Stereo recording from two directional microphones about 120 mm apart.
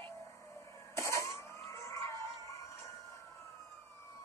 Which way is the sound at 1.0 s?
25° left (ahead or behind).